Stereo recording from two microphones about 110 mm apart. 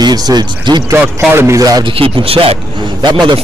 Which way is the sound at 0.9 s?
25° right (ahead or behind).